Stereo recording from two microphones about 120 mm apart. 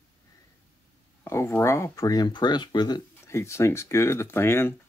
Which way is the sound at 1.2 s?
20° left (ahead or behind).